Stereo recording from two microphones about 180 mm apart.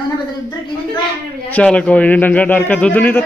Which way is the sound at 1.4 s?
5° left (ahead or behind).